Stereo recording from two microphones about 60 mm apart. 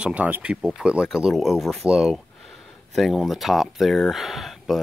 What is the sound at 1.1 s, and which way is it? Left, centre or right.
Speech, centre.